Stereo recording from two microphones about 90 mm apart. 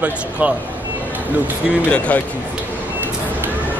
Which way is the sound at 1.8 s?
15° left (ahead or behind).